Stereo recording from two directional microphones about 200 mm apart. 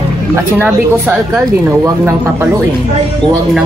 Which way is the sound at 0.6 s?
10° right (ahead or behind).